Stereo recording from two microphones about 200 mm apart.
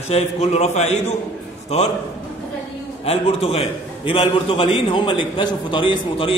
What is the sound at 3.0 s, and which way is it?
A man's voice, 30° left (ahead or behind).